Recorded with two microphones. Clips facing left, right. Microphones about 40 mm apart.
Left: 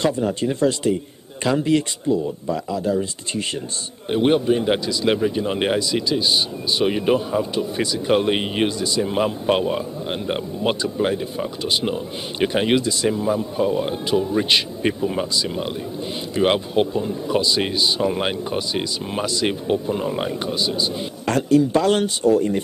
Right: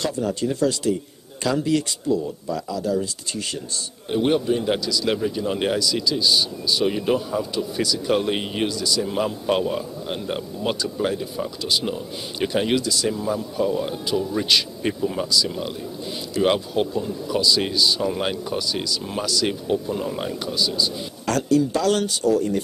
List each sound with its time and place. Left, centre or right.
0.0 s speech: left